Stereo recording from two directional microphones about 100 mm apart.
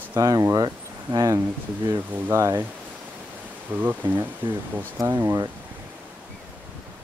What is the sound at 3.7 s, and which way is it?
Speech, 15° right (ahead or behind).